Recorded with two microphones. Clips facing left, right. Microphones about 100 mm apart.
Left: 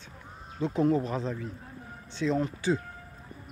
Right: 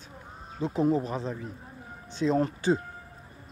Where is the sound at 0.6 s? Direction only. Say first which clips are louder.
Left 1 dB; 35° right (ahead or behind).